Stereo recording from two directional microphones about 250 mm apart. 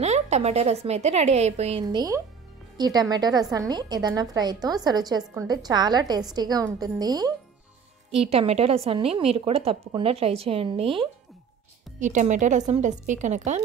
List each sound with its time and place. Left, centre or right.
0.0 s a woman's voice: right